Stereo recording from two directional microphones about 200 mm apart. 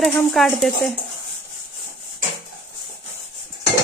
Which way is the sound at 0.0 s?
Centre (ahead or behind).